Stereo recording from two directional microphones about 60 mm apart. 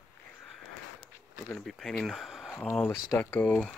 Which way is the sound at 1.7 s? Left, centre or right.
Centre.